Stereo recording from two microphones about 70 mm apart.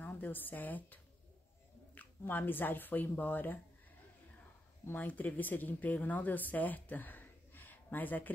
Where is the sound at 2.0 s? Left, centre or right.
Left.